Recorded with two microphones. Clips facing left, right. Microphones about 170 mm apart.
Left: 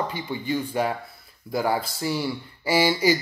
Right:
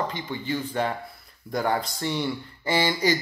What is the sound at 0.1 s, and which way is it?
Speech, 10° left (ahead or behind).